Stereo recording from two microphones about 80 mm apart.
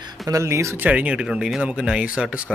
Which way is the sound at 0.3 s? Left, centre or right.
Right.